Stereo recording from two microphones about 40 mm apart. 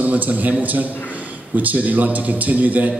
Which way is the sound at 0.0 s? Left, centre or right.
Right.